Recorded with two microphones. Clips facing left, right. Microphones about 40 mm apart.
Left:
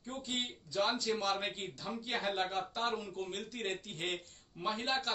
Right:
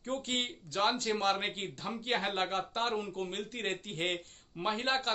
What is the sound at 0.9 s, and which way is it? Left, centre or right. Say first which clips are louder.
A man's voice: right 3 dB; right.